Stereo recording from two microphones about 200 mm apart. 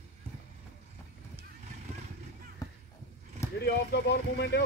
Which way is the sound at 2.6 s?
15° left (ahead or behind).